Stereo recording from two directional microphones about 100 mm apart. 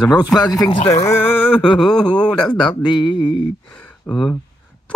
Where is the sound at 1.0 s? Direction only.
20° left (ahead or behind).